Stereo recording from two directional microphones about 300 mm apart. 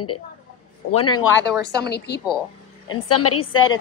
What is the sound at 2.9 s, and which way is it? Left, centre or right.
Speech, left.